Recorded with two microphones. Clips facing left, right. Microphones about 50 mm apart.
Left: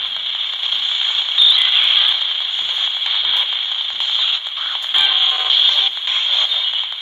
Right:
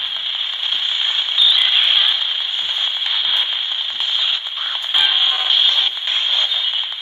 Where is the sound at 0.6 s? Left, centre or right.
Centre.